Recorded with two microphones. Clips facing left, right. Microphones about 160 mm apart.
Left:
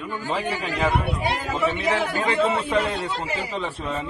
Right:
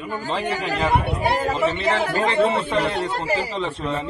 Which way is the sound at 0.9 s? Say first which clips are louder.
Right 3 dB; 65° right (ahead or behind).